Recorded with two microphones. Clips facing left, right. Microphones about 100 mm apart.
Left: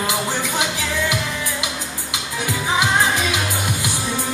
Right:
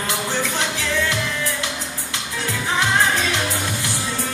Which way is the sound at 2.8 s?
10° left (ahead or behind).